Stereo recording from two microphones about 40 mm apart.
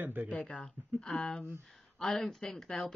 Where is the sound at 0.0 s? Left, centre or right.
Right.